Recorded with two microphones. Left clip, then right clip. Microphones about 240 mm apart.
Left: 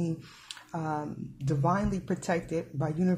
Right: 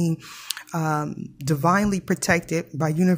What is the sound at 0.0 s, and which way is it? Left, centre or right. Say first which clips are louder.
Speech: right 7 dB; right.